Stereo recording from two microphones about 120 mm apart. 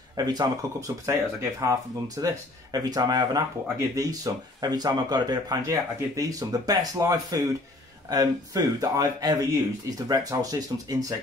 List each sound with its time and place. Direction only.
0.1 s speech: 35° right (ahead or behind)